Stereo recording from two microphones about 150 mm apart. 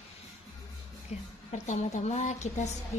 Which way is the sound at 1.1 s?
45° left (ahead or behind).